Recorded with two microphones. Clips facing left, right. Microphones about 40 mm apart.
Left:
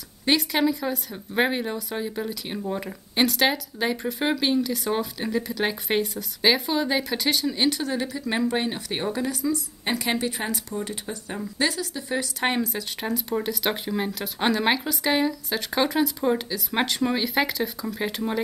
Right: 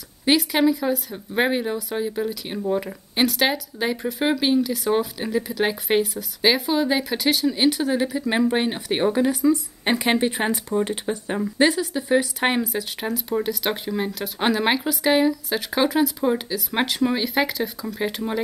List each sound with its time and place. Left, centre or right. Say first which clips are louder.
0.2 s a woman's voice: right 3 dB; centre